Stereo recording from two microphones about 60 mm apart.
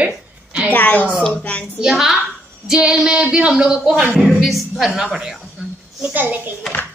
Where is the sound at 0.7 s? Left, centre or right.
Left.